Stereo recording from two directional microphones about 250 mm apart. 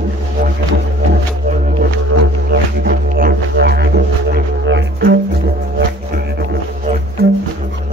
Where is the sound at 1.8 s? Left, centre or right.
Right.